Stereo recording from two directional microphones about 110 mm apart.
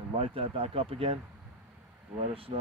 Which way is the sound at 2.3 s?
60° right (ahead or behind).